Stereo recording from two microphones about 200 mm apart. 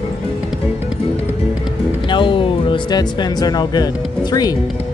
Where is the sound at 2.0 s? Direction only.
25° left (ahead or behind).